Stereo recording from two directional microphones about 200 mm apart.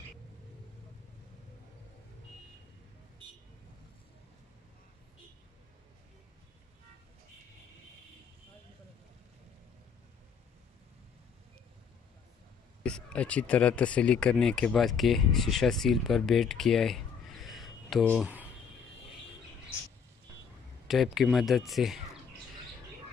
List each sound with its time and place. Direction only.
12.8 s speech: 5° left (ahead or behind)
20.8 s speech: centre (ahead or behind)